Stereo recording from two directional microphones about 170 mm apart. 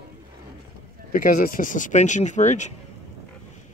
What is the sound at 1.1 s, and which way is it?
Speech, 50° left (ahead or behind).